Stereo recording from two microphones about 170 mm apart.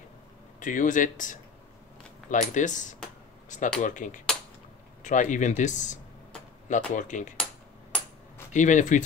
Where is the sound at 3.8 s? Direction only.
50° left (ahead or behind).